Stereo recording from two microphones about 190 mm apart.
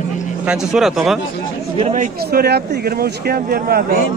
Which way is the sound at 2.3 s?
55° right (ahead or behind).